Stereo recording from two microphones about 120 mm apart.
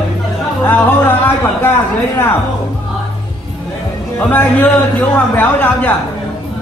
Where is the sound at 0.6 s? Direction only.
15° left (ahead or behind).